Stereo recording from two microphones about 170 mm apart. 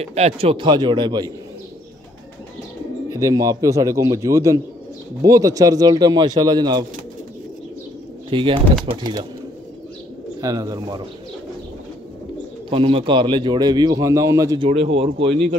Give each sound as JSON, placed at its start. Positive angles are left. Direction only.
{"t": 0.0, "sound": "a man's voice", "side_deg": -35}
{"t": 3.1, "sound": "a man's voice", "side_deg": -20}
{"t": 8.3, "sound": "a man's voice", "side_deg": -30}
{"t": 10.4, "sound": "a man's voice", "side_deg": -20}
{"t": 12.6, "sound": "a man's voice", "side_deg": -30}
{"t": 14.7, "sound": "speech", "side_deg": -35}